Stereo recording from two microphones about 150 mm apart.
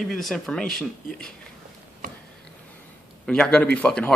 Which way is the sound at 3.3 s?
5° left (ahead or behind).